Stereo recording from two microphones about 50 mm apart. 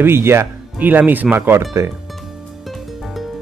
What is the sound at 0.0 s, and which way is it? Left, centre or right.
Speech, right.